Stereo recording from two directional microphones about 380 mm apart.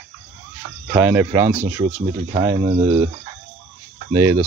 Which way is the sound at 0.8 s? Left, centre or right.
Centre.